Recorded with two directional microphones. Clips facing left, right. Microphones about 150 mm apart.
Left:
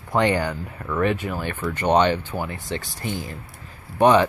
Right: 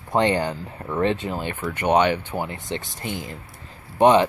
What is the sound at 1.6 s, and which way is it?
Speech, 10° right (ahead or behind).